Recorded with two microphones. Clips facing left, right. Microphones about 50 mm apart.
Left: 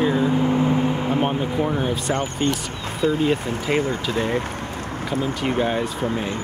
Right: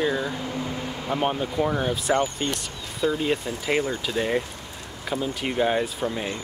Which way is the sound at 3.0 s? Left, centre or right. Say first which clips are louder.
Left 3 dB; left.